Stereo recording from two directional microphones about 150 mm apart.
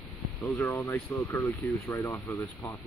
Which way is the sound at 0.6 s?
15° left (ahead or behind).